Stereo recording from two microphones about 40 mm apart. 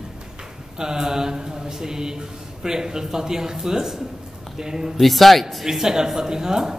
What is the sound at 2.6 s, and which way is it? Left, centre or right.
A woman's voice, centre.